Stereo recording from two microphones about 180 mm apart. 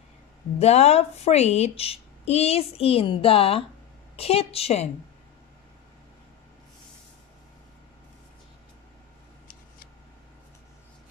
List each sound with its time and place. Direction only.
0.6 s a woman's voice: 35° left (ahead or behind)